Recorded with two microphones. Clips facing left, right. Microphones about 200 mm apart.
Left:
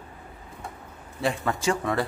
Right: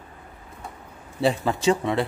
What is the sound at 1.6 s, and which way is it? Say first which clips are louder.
Speech: right 4 dB; 25° right (ahead or behind).